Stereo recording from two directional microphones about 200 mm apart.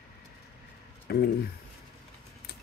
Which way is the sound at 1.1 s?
50° left (ahead or behind).